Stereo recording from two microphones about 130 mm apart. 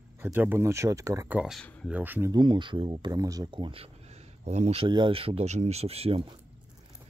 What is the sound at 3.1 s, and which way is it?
Speech, 25° right (ahead or behind).